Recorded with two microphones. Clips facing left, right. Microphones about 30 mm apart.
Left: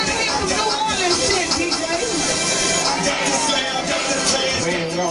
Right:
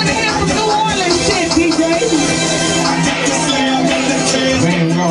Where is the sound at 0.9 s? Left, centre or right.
Right.